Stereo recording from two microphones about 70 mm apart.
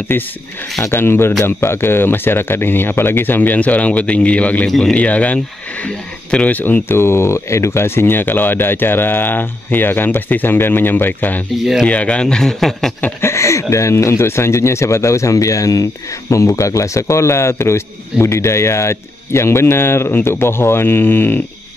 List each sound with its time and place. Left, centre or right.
0.1 s speech: left
4.6 s speech: centre
4.9 s speech: left
13.2 s speech: left